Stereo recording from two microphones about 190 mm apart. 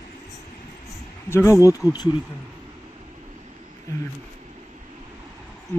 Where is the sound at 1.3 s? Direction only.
15° left (ahead or behind).